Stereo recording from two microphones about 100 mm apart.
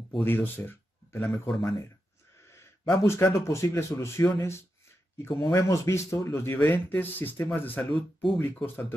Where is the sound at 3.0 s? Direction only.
25° left (ahead or behind).